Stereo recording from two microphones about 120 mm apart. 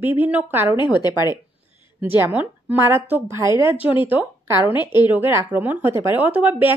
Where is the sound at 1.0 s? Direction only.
35° left (ahead or behind).